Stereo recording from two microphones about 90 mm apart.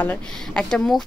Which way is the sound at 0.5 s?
10° left (ahead or behind).